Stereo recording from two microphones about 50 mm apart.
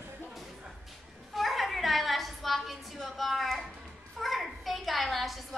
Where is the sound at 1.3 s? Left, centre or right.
Centre.